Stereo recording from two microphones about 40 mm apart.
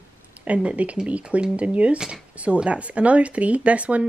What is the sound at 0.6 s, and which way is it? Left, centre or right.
Speech, right.